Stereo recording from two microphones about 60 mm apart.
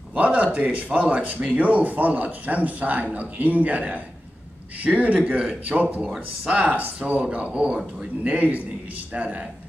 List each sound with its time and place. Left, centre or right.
0.1 s speech: right
6.1 s speech: centre
6.6 s speech: right